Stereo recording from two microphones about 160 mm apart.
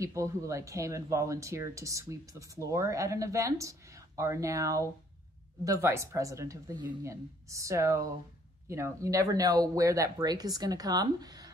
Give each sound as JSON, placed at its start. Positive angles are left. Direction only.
{"t": 0.0, "sound": "speech", "side_deg": -20}